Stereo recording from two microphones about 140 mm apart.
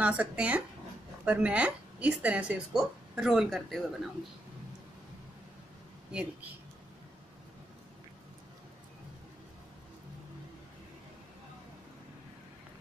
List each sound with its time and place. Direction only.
0.0 s a woman's voice: 10° right (ahead or behind)